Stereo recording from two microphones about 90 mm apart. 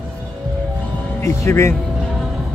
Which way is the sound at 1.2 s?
30° left (ahead or behind).